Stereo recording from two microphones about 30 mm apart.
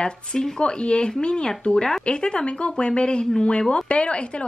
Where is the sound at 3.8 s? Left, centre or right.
Left.